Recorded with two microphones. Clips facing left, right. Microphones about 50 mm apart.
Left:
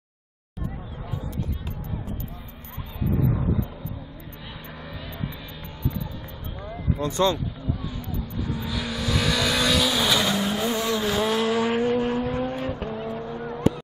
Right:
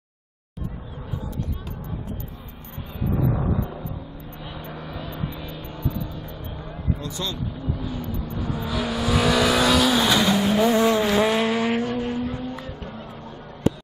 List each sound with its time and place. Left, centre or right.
3.1 s a sound: centre
4.7 s vehicle: centre
7.0 s speech: left
7.8 s vehicle: centre
10.7 s vehicle: right
11.0 s vehicle: right
11.8 s vehicle: centre
12.3 s vehicle: left
12.5 s vehicle: left